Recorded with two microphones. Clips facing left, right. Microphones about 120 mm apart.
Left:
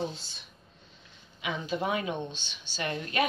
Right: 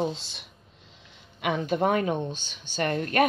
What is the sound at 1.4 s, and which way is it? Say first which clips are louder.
Speech: right 7 dB; 55° right (ahead or behind).